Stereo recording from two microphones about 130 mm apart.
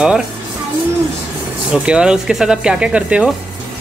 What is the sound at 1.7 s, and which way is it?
Speech, 5° right (ahead or behind).